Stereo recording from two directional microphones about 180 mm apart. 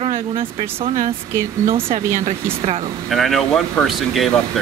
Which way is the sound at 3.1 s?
Centre (ahead or behind).